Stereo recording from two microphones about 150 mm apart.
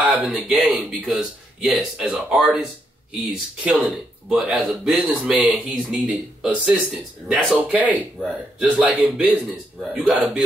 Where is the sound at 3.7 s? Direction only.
Centre (ahead or behind).